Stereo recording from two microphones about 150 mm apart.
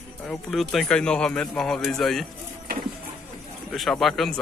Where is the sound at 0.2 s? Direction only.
5° left (ahead or behind).